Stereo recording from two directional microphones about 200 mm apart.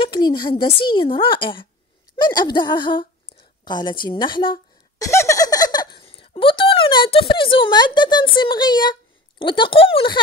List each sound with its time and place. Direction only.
0.0 s speech: 25° left (ahead or behind)
2.1 s a sound: 20° left (ahead or behind)
9.4 s speech: 25° left (ahead or behind)